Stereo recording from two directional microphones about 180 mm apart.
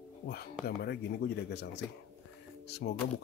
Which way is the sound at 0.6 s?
65° left (ahead or behind).